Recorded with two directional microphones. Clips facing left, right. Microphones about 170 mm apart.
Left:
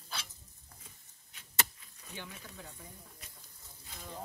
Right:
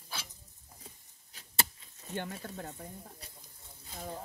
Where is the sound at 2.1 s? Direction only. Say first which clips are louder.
Right 9 dB; 55° right (ahead or behind).